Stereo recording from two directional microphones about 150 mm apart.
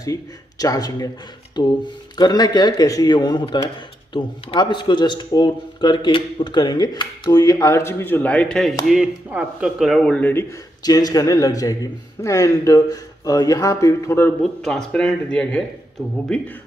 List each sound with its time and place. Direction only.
0.0 s speech: 25° left (ahead or behind)
10.8 s speech: 25° left (ahead or behind)
14.4 s speech: 5° left (ahead or behind)